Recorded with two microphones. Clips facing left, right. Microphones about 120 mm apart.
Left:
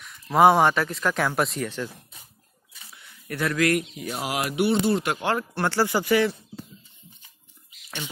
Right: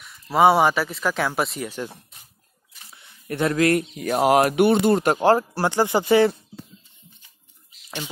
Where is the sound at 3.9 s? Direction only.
55° right (ahead or behind).